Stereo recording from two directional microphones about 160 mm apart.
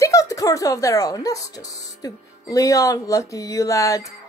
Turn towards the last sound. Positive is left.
turn(degrees=20)  # may be behind; listen again after turning